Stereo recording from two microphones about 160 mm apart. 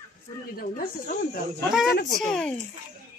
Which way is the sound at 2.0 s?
55° left (ahead or behind).